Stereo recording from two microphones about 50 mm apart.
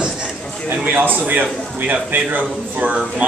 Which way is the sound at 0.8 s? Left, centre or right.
Right.